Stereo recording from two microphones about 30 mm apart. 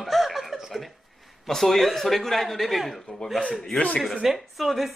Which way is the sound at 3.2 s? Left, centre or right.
Left.